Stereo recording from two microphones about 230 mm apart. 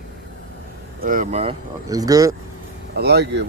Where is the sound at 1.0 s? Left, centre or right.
Right.